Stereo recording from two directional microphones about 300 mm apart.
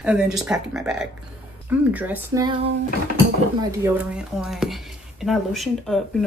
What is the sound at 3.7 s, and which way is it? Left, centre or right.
Speech, centre.